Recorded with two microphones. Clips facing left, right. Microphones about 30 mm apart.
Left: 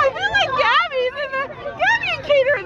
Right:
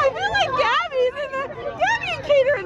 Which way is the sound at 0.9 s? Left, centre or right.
Left.